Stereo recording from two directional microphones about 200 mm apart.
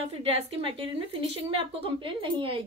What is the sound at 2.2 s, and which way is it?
Speech, 25° right (ahead or behind).